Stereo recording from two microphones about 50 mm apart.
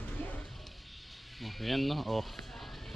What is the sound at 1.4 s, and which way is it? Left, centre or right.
Speech, centre.